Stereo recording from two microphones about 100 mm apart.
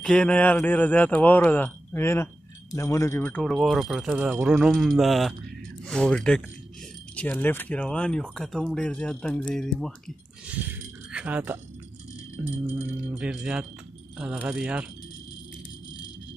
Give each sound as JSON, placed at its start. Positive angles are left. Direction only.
{"t": 0.0, "sound": "speech", "side_deg": 10}
{"t": 3.4, "sound": "speech", "side_deg": 0}
{"t": 11.1, "sound": "speech", "side_deg": -15}
{"t": 12.6, "sound": "keys jangling", "side_deg": -15}